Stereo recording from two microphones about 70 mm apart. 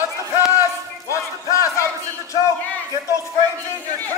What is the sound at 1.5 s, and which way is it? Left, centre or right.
Battle cry, left.